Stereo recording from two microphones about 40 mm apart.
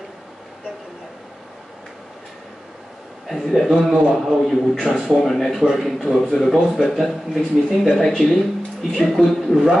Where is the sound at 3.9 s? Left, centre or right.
Centre.